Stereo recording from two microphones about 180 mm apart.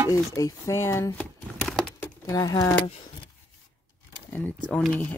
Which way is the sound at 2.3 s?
20° left (ahead or behind).